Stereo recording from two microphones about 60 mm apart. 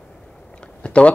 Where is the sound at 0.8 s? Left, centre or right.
Centre.